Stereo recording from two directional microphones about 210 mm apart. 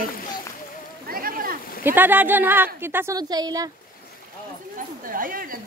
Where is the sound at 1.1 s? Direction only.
45° right (ahead or behind).